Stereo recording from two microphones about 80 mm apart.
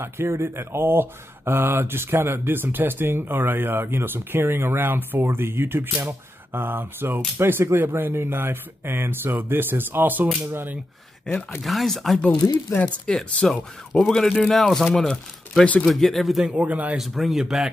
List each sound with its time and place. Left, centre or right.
0.0 s speech: right
10.2 s speech: centre
10.5 s speech: right
11.6 s speech: centre
12.7 s speech: centre
15.6 s speech: centre
15.9 s speech: centre
16.4 s speech: centre
16.9 s speech: centre